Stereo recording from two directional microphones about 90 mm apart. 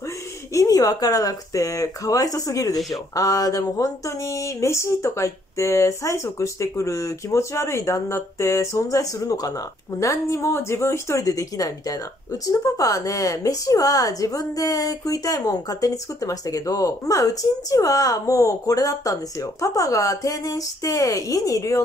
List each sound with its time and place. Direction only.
0.5 s a woman's voice: 40° left (ahead or behind)